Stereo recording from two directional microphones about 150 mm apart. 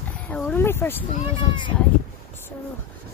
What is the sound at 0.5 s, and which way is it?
Speech, 15° left (ahead or behind).